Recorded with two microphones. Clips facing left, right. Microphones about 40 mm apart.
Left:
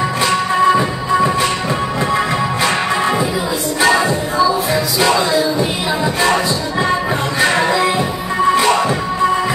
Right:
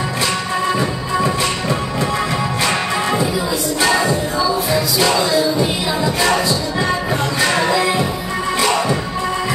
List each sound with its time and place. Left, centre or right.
0.7 s music: centre